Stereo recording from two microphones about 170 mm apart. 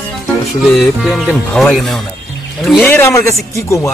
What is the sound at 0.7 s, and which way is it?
Speech, centre (ahead or behind).